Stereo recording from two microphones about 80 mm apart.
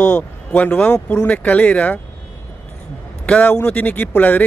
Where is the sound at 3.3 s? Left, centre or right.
Centre.